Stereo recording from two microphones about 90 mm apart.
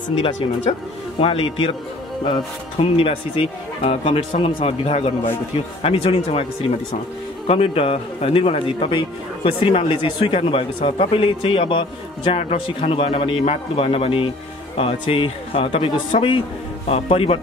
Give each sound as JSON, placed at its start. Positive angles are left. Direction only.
{"t": 1.2, "sound": "speech", "side_deg": 90}
{"t": 3.0, "sound": "speech", "side_deg": 90}